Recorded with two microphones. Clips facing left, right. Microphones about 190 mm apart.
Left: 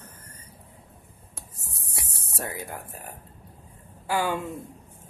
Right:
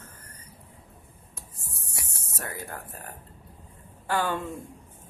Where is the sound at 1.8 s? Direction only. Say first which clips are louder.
Left 3 dB; 30° left (ahead or behind).